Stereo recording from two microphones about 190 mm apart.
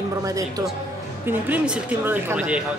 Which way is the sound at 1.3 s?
5° right (ahead or behind).